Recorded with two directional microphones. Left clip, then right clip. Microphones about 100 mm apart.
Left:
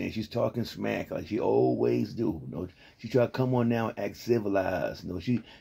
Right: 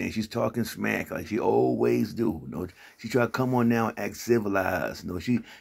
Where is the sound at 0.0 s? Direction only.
15° left (ahead or behind).